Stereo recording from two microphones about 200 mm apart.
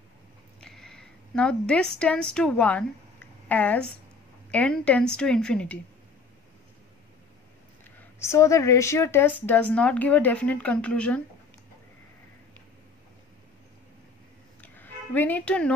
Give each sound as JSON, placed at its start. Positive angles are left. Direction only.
{"t": 0.6, "sound": "a sound", "side_deg": 5}
{"t": 2.3, "sound": "a woman's voice", "side_deg": 5}
{"t": 8.2, "sound": "speech", "side_deg": 15}
{"t": 14.6, "sound": "music", "side_deg": 10}